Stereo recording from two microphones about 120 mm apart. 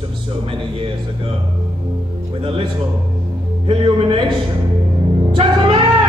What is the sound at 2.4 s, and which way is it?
Music, 45° right (ahead or behind).